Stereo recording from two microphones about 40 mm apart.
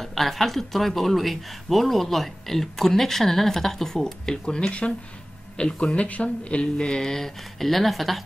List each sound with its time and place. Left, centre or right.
0.0 s speech: centre